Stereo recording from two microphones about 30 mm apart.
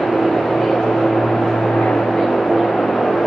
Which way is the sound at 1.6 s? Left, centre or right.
Left.